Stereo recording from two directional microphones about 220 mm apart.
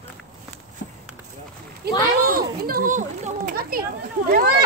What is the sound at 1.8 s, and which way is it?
A child's voice, 45° right (ahead or behind).